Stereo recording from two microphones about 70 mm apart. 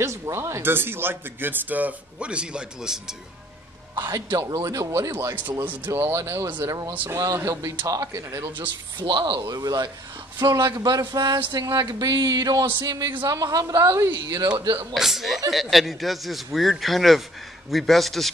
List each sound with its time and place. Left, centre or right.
0.0 s speech: right; by 3.2 s centre
3.9 s a man's voice: right
4.4 s speech: right
8.5 s speech: right
15.0 s speech: centre